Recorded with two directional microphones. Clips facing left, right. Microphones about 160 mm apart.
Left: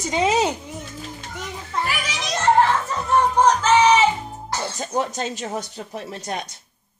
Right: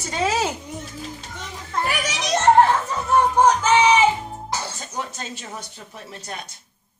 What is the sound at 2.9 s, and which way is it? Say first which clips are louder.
Music: even; 5° right (ahead or behind).